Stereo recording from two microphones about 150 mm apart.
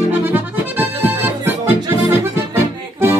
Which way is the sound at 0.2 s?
15° right (ahead or behind).